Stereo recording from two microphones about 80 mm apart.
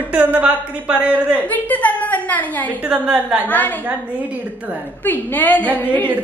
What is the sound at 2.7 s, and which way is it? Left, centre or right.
Speech, centre.